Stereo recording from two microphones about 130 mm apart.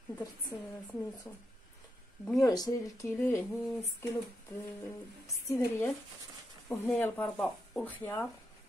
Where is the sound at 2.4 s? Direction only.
25° left (ahead or behind).